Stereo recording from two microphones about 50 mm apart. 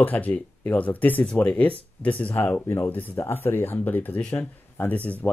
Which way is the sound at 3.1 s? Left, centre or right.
Left.